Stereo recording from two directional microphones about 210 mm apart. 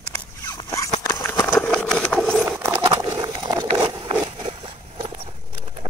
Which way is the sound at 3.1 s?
20° right (ahead or behind).